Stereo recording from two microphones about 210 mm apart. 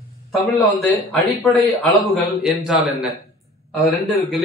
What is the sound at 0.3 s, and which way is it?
A man's voice, centre (ahead or behind).